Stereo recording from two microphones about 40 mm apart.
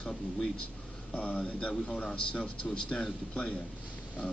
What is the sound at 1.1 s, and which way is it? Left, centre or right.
A man's voice, left.